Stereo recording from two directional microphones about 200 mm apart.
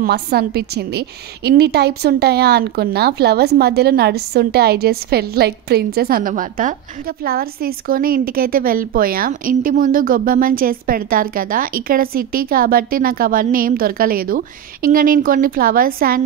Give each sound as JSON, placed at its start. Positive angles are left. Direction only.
{"t": 0.0, "sound": "a woman's voice", "side_deg": -50}